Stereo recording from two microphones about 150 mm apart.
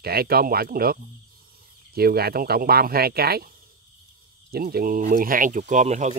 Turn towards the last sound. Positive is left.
turn(degrees=-50)  # may be behind; listen again after turning